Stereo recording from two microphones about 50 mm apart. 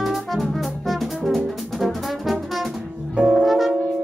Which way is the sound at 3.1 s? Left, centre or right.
Right.